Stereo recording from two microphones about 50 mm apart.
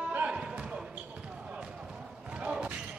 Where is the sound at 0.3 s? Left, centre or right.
Centre.